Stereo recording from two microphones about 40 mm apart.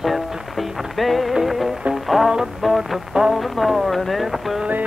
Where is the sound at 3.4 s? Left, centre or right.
Centre.